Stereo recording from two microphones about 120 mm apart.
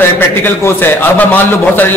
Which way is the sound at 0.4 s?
15° left (ahead or behind).